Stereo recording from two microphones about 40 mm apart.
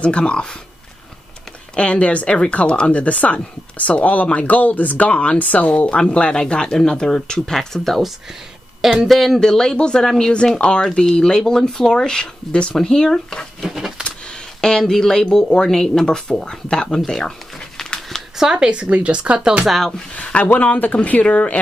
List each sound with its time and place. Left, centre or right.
0.0 s speech: left
1.8 s speech: left
2.2 s speech: left
9.0 s speech: centre
9.4 s speech: centre
13.7 s a sound: centre
14.6 s speech: centre
16.1 s speech: left
17.8 s a sound: centre
18.4 s speech: centre
20.5 s speech: left